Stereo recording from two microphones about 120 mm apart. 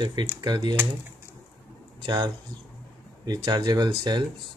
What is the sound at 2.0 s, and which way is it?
Speech, 40° right (ahead or behind).